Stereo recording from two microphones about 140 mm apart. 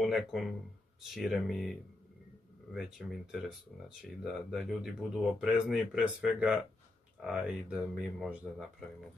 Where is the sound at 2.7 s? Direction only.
Centre (ahead or behind).